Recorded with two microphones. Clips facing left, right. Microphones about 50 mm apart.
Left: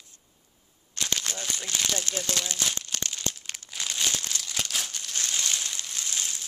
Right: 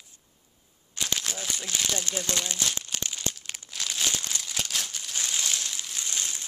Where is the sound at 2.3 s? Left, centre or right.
Centre.